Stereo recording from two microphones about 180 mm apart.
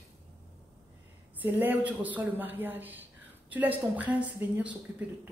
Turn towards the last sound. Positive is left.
turn(degrees=-10)  # may be behind; listen again after turning